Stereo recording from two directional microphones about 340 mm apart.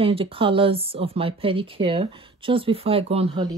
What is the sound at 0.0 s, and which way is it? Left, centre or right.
Speech, centre.